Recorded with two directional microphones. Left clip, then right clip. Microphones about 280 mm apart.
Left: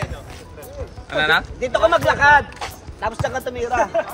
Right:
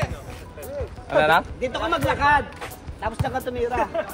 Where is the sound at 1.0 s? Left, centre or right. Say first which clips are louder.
Even; centre.